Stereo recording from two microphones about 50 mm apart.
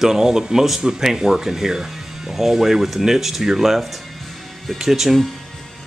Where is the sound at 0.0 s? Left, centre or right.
Centre.